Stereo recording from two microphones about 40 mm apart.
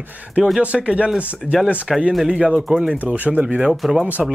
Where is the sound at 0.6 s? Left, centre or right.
Right.